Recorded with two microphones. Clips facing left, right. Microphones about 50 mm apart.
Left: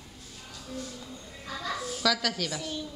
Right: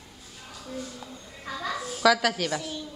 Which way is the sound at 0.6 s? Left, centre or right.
Centre.